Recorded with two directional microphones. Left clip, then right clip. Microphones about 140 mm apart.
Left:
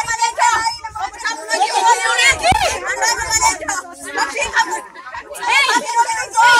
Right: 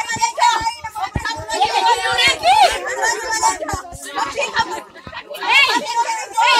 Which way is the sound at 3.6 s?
35° right (ahead or behind).